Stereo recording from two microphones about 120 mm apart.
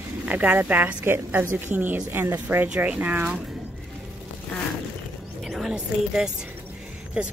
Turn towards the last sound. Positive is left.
turn(degrees=-10)  # may be behind; listen again after turning